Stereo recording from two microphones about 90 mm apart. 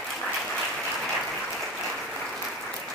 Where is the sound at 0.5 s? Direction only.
10° left (ahead or behind).